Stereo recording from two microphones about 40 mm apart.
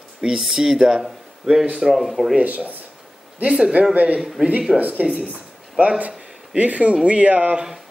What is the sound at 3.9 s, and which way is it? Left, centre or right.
Speech, right.